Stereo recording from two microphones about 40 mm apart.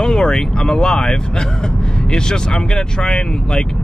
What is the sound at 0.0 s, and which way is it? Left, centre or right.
Speech, centre.